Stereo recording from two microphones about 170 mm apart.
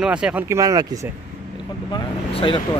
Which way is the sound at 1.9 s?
30° left (ahead or behind).